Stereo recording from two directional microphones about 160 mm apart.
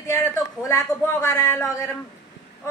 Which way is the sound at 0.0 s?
20° left (ahead or behind).